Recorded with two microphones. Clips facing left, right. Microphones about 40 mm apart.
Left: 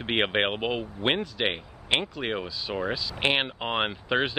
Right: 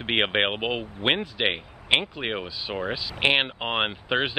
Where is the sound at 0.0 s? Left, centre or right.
Centre.